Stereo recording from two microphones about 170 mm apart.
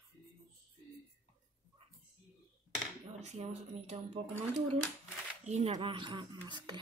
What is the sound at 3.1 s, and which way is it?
Speech, 40° right (ahead or behind).